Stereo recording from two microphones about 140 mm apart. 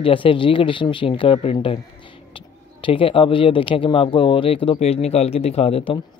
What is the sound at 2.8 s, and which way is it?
Speech, 40° left (ahead or behind).